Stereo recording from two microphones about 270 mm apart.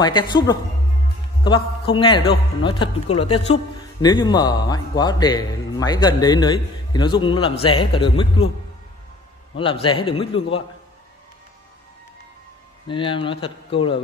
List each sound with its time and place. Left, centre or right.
0.0 s a man's voice: centre
9.6 s a man's voice: centre
12.8 s a man's voice: centre